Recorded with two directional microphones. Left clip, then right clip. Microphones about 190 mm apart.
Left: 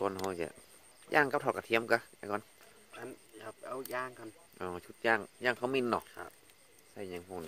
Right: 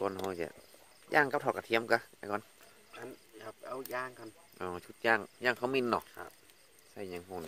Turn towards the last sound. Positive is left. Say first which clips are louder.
# right 1 dB
turn(degrees=-15)  # may be behind; listen again after turning